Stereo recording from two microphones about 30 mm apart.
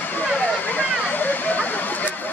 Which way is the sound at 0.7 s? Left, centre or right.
Left.